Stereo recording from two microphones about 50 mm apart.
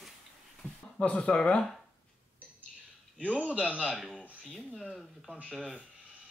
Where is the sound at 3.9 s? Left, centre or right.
Centre.